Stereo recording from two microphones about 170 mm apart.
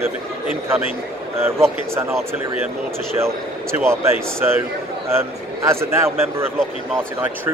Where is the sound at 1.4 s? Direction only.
15° right (ahead or behind).